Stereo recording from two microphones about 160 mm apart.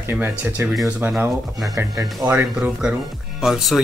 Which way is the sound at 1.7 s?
20° right (ahead or behind).